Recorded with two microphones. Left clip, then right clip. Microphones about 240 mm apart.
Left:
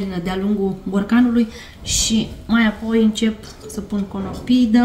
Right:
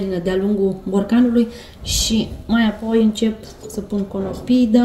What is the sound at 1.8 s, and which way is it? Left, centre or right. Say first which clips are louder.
Speech: even; left.